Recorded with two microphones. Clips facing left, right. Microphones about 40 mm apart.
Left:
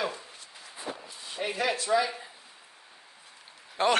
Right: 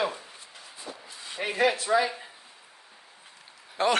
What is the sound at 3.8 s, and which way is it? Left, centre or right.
Speech, centre.